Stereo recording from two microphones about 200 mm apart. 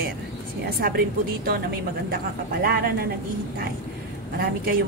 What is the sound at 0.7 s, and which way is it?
A woman's voice, 50° right (ahead or behind).